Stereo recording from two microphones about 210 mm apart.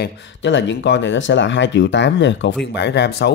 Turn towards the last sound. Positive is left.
turn(degrees=50)  # may be behind; listen again after turning